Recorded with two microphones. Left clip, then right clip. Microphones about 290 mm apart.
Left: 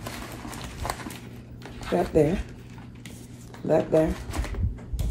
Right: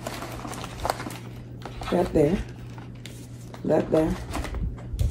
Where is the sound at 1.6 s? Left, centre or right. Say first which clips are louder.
Right 1 dB; centre.